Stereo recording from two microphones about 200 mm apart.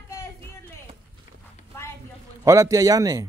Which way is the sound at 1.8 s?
10° left (ahead or behind).